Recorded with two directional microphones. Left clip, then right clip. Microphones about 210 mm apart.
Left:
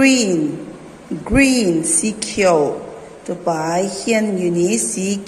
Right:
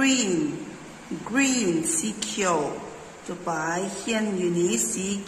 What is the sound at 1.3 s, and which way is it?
Speech, 15° left (ahead or behind).